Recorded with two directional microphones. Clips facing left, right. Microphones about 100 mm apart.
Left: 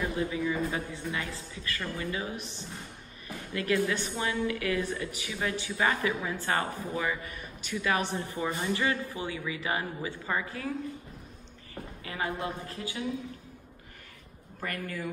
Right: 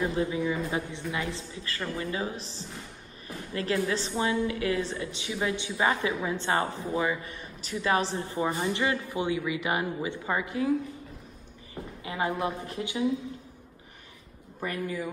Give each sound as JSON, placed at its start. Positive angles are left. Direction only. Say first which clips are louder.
{"t": 0.1, "sound": "a woman's voice", "louder": "right 2 dB", "side_deg": -25}
{"t": 11.7, "sound": "speech", "louder": "right 3 dB", "side_deg": -20}
{"t": 14.6, "sound": "a woman's voice", "louder": "right 4 dB", "side_deg": -15}